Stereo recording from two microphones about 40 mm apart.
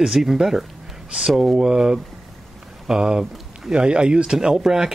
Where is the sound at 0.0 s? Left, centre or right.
Centre.